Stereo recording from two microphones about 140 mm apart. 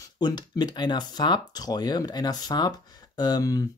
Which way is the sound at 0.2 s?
30° left (ahead or behind).